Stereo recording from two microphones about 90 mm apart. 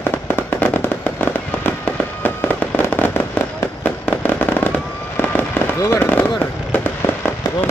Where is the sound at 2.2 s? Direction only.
20° left (ahead or behind).